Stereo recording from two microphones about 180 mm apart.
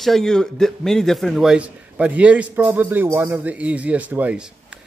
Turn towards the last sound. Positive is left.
turn(degrees=-10)  # may be behind; listen again after turning